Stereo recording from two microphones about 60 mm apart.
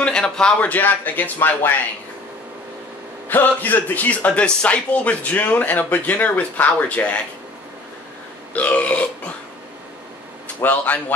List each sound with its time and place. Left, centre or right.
0.0 s a man's voice: centre
0.7 s speech: left
3.3 s a man's voice: left
8.5 s a man's voice: left
10.6 s speech: left